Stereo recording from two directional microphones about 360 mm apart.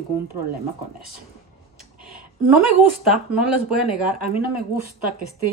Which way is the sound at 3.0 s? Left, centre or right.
Centre.